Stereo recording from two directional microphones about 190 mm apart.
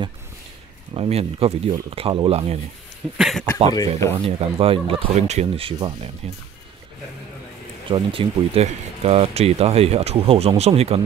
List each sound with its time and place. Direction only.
0.9 s speech: 30° right (ahead or behind)
3.2 s speech: centre (ahead or behind)
3.7 s speech: 20° left (ahead or behind)
4.1 s speech: 30° right (ahead or behind)
7.9 s speech: 30° right (ahead or behind)